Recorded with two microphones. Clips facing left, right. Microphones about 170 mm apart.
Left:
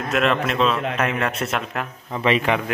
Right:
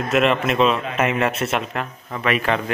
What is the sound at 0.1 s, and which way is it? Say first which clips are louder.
Speech: right 2 dB; centre (ahead or behind).